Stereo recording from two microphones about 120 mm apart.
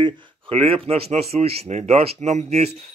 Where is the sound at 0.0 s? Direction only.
50° right (ahead or behind).